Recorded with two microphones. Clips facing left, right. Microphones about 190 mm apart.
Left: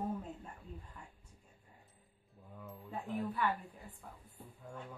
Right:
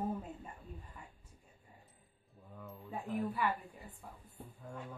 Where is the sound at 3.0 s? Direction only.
10° right (ahead or behind).